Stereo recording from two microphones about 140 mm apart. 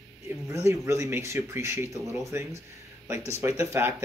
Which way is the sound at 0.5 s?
20° right (ahead or behind).